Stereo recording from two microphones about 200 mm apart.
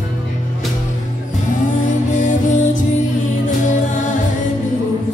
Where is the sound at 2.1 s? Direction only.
40° left (ahead or behind).